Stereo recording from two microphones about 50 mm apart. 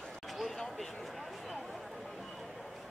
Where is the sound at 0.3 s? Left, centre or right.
Centre.